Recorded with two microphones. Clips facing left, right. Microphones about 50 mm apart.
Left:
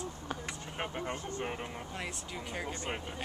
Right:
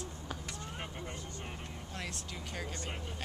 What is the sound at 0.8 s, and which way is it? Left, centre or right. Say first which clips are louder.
Speech: left 6 dB; left.